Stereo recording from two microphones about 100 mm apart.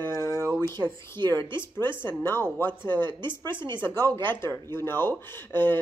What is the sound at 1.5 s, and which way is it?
Speech, 25° left (ahead or behind).